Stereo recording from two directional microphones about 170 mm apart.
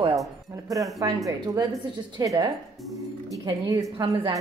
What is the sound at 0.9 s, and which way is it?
A woman's voice, 20° right (ahead or behind).